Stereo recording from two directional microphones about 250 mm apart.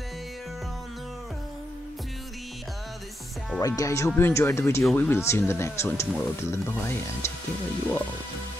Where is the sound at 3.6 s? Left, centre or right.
Centre.